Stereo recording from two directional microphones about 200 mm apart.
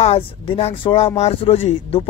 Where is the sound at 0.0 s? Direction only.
30° left (ahead or behind).